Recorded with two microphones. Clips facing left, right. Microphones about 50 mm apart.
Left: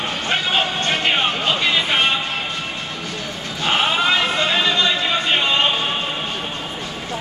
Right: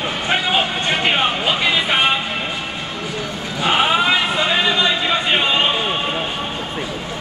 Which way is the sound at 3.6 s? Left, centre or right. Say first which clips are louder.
Right 2 dB; centre.